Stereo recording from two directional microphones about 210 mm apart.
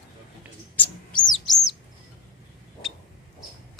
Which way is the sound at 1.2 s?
20° left (ahead or behind).